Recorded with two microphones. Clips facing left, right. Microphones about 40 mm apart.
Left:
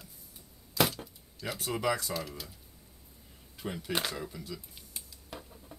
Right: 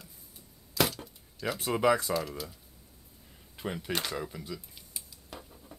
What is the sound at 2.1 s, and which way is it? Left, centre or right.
Speech, centre.